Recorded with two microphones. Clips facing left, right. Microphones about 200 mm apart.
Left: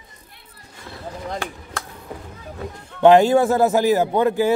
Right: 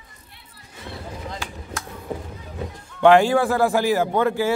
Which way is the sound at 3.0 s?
20° left (ahead or behind).